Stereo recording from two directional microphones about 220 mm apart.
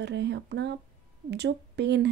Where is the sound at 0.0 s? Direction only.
50° right (ahead or behind).